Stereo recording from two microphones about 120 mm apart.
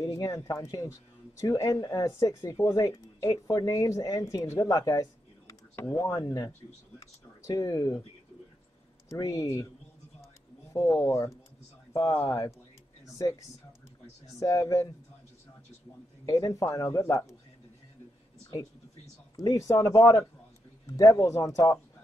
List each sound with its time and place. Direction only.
0.0 s speech: 30° left (ahead or behind)
4.6 s a sound: 30° left (ahead or behind)
5.9 s speech: 25° left (ahead or behind)
9.1 s speech: 30° left (ahead or behind)
11.0 s speech: 25° left (ahead or behind)
16.3 s speech: 30° left (ahead or behind)
19.3 s speech: 30° left (ahead or behind)